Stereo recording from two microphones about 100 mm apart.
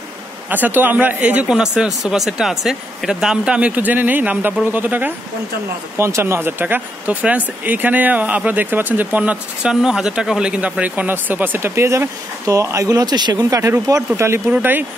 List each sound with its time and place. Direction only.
0.5 s speech: 20° right (ahead or behind)
14.5 s speech: 20° right (ahead or behind)